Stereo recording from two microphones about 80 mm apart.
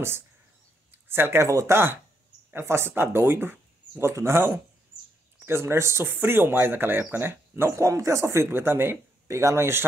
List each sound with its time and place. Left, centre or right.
0.9 s speech: right